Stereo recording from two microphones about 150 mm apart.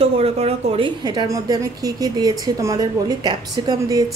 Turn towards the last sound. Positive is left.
turn(degrees=-25)  # may be behind; listen again after turning